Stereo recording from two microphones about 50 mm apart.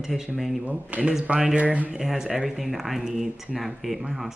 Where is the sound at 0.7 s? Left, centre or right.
Right.